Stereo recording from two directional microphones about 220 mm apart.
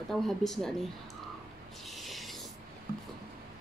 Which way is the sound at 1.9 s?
Centre (ahead or behind).